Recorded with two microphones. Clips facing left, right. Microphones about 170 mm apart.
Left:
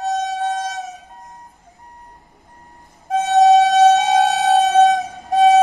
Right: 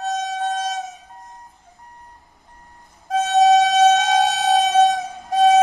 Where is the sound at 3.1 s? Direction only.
20° left (ahead or behind).